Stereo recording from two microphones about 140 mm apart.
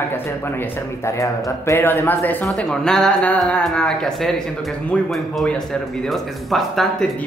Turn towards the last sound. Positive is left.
turn(degrees=0)  # may be behind; listen again after turning